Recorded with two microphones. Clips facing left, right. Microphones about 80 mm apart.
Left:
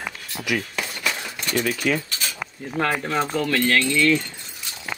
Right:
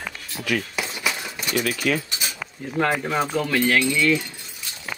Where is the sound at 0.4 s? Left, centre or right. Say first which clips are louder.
Even; left.